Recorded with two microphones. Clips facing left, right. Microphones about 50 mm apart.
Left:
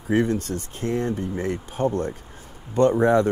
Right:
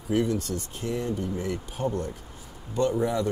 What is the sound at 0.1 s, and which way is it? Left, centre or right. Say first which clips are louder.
Speech: left 4 dB; left.